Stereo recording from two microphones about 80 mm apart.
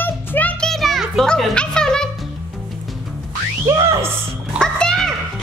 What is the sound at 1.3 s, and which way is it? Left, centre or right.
Speech, centre.